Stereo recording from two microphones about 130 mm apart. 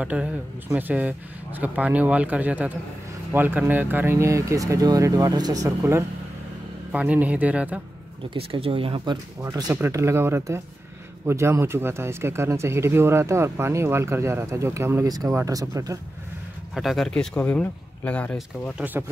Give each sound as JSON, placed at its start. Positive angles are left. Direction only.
{"t": 0.0, "sound": "speech", "side_deg": -10}
{"t": 6.9, "sound": "speech", "side_deg": -10}
{"t": 8.3, "sound": "speech", "side_deg": -45}
{"t": 9.4, "sound": "speech", "side_deg": -25}
{"t": 16.7, "sound": "speech", "side_deg": 0}